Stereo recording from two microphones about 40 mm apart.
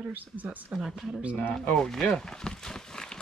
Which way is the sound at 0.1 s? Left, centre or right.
Right.